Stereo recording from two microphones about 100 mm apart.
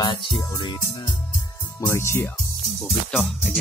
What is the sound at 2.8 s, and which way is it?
Music, centre (ahead or behind).